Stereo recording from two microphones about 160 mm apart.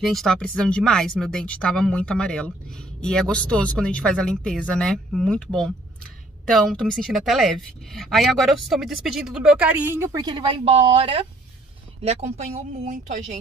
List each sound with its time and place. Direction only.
0.0 s speech: centre (ahead or behind); by 10.2 s 15° right (ahead or behind)
10.2 s speech: 30° right (ahead or behind); by 13.4 s 50° right (ahead or behind)